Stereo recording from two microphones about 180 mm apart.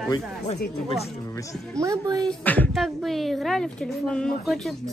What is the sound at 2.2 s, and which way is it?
Speech, 10° left (ahead or behind).